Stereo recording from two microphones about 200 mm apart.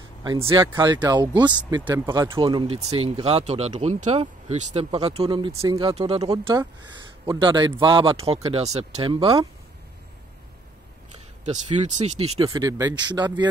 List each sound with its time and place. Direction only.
0.2 s a man's voice: 20° right (ahead or behind)
5.5 s a man's voice: 15° right (ahead or behind)
5.9 s speech: 30° right (ahead or behind)
6.2 s a man's voice: 20° right (ahead or behind)
11.4 s speech: 35° right (ahead or behind)
12.4 s a man's voice: 15° right (ahead or behind)